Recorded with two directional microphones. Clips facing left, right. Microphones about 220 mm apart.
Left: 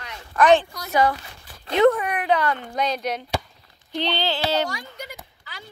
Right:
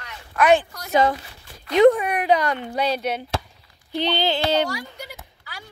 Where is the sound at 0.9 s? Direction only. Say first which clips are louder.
Right 2 dB; 20° right (ahead or behind).